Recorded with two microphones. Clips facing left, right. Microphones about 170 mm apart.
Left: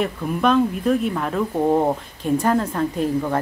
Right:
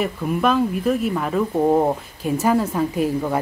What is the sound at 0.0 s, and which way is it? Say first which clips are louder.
Speech: even; 5° right (ahead or behind).